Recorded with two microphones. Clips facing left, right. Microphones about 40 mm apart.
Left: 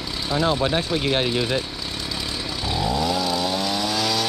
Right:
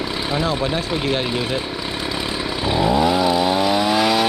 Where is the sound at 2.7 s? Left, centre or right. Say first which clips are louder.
Right 6 dB; right.